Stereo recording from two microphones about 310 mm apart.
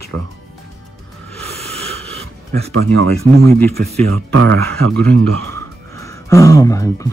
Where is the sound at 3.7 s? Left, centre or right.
Right.